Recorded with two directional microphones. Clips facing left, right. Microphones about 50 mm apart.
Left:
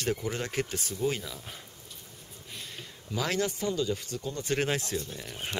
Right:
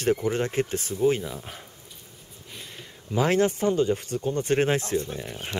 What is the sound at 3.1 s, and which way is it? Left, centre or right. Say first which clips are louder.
Speech: right 8 dB; right.